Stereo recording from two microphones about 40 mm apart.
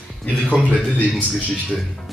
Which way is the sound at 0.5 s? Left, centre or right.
Right.